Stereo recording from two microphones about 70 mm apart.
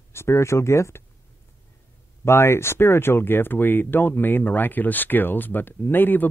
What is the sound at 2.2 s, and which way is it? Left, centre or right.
Speech, left.